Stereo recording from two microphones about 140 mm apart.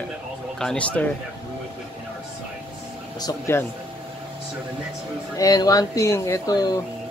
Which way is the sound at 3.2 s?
25° left (ahead or behind).